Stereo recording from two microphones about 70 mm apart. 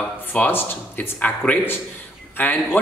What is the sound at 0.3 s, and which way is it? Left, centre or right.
Speech, left.